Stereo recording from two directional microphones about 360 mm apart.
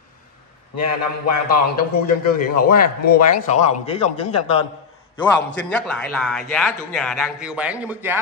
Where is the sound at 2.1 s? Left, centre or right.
Left.